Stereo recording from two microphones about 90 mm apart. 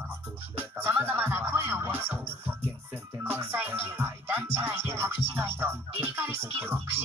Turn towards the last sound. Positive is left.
turn(degrees=-25)  # may be behind; listen again after turning